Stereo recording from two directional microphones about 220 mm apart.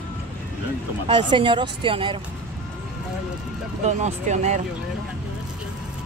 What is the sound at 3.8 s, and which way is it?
Speech, 30° right (ahead or behind).